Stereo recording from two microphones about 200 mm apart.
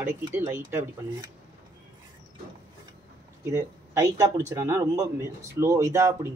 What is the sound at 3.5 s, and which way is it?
Speech, 15° right (ahead or behind).